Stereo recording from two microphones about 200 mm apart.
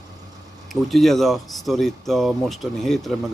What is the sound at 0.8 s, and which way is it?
Speech, centre (ahead or behind).